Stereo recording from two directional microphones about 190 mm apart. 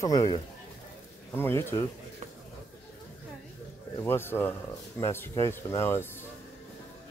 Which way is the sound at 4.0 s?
10° left (ahead or behind).